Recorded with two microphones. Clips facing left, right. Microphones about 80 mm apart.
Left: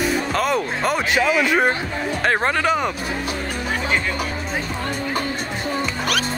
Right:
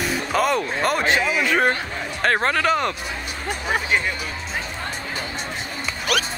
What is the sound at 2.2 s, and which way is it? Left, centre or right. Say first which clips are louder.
Speech: even; centre.